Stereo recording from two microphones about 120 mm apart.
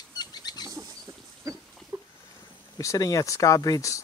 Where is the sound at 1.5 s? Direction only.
30° right (ahead or behind).